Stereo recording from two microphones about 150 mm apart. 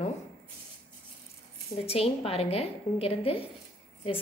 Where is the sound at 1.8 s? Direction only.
40° left (ahead or behind).